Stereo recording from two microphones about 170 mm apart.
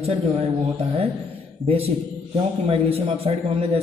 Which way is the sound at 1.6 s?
35° right (ahead or behind).